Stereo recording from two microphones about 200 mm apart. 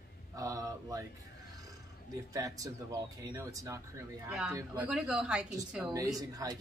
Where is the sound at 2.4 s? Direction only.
15° right (ahead or behind).